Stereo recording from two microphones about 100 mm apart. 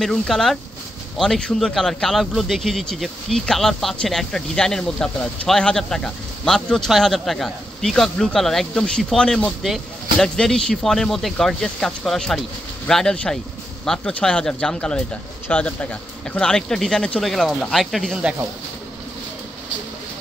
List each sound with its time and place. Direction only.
0.0 s speech: 5° left (ahead or behind)